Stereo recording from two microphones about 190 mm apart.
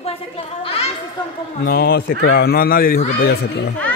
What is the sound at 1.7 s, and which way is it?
A man's voice, 55° left (ahead or behind).